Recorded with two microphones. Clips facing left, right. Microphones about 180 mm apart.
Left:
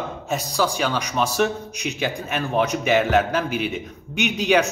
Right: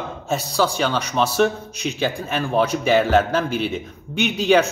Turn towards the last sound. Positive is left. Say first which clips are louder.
# right 2 dB
turn(degrees=15)  # may be behind; listen again after turning